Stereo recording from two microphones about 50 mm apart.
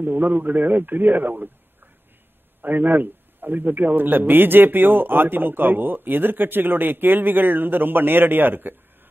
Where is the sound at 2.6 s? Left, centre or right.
Right.